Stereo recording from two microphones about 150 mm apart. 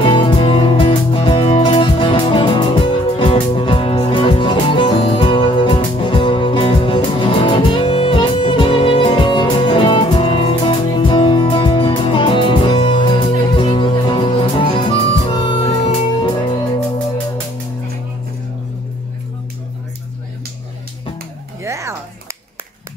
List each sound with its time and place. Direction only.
0.0 s music: 30° left (ahead or behind)
21.6 s music: 20° right (ahead or behind)